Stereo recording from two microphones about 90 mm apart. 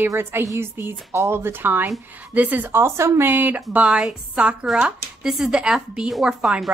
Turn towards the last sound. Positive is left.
turn(degrees=-5)  # may be behind; listen again after turning